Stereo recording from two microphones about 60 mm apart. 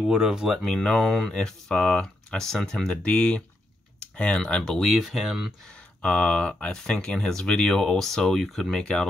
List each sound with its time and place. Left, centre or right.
0.1 s speech: centre
0.5 s speech: centre
6.0 s speech: centre